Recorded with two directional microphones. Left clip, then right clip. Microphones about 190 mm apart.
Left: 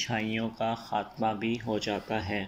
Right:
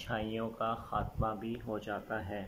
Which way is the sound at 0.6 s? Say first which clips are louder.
Left 5 dB; 35° left (ahead or behind).